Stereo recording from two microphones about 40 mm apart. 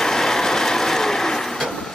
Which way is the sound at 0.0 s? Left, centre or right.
Centre.